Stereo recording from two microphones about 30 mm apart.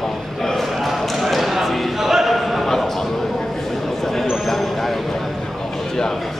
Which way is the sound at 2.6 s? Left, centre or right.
Centre.